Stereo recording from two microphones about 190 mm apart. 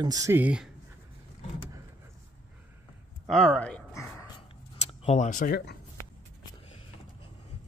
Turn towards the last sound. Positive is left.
turn(degrees=50)  # may be behind; listen again after turning